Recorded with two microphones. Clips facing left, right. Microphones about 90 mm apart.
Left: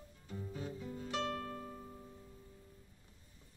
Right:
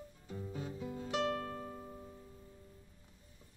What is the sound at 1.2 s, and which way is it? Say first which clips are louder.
Music: right 3 dB; 25° right (ahead or behind).